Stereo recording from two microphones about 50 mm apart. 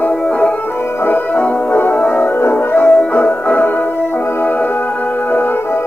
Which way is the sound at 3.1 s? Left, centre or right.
Left.